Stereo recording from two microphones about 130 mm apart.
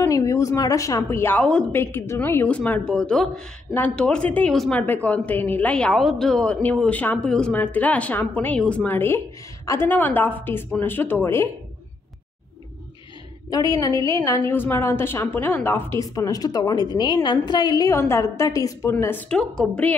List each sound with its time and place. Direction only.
0.1 s a woman's voice: 25° left (ahead or behind)
13.5 s a woman's voice: 25° left (ahead or behind); by 20.0 s 10° left (ahead or behind)